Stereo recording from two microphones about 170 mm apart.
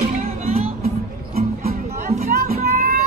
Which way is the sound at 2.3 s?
55° right (ahead or behind).